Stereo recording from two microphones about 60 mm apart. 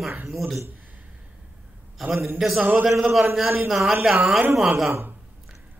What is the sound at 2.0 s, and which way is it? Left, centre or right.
A man's voice, centre.